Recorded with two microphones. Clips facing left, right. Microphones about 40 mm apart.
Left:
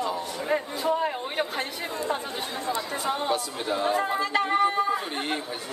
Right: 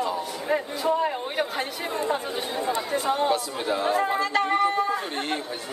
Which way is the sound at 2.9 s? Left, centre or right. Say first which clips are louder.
Right 5 dB; centre.